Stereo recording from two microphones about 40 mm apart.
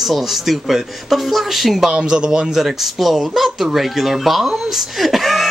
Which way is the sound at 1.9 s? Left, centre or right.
Right.